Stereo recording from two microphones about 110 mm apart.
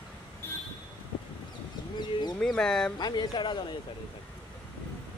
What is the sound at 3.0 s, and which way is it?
Speech, 40° left (ahead or behind).